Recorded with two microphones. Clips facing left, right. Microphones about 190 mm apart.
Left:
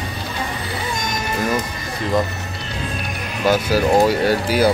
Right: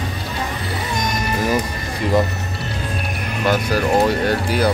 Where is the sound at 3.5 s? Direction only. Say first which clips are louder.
Left 2 dB; 5° left (ahead or behind).